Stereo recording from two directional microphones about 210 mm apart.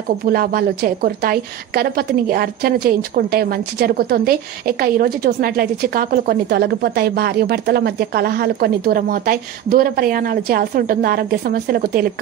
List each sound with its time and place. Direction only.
0.2 s a woman's voice: 45° right (ahead or behind)